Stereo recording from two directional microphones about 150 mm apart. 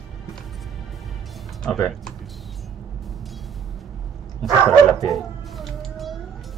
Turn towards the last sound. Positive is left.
turn(degrees=0)  # may be behind; listen again after turning